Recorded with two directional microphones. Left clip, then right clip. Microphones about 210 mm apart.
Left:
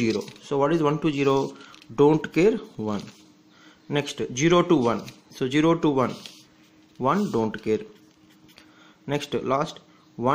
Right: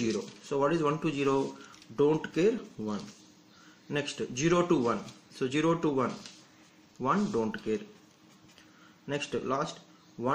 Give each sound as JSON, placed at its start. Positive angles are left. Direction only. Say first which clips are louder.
{"t": 0.0, "sound": "speech", "louder": "left 7 dB", "side_deg": 40}
{"t": 9.0, "sound": "speech", "louder": "left 6 dB", "side_deg": 40}